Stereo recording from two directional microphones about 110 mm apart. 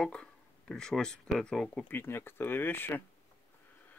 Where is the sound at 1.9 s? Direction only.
20° left (ahead or behind).